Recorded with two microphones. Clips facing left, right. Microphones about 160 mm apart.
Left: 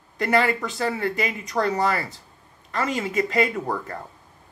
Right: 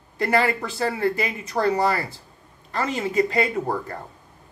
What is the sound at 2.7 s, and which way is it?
Speech, 30° right (ahead or behind).